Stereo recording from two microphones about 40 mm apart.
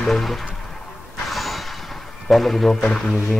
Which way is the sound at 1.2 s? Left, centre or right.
Centre.